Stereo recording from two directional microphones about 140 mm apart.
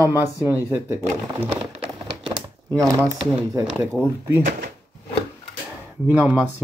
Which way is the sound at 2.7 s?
25° right (ahead or behind).